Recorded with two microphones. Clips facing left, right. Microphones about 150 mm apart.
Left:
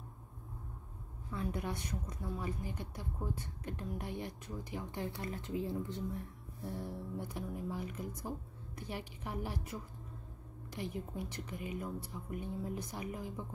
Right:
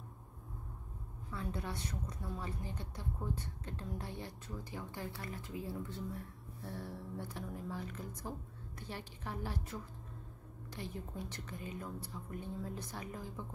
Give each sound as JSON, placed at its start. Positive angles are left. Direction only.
{"t": 1.3, "sound": "a woman's voice", "side_deg": 15}